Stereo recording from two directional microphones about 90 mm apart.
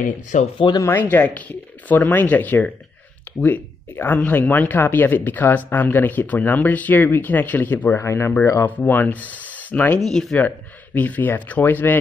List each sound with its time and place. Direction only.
0.6 s speech: 75° left (ahead or behind)
1.1 s speech: 20° left (ahead or behind)
8.6 s speech: 20° left (ahead or behind)
9.9 s speech: 5° left (ahead or behind)
11.0 s speech: 20° left (ahead or behind)